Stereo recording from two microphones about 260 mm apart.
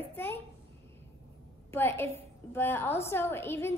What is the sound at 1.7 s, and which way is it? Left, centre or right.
A woman's voice, centre.